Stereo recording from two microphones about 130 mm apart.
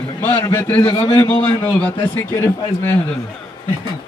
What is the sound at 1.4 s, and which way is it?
A man's voice, 15° left (ahead or behind).